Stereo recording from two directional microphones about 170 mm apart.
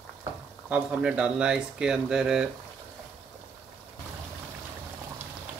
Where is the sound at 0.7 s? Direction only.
10° right (ahead or behind).